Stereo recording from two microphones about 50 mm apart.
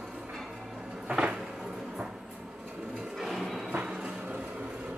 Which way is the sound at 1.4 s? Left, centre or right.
Centre.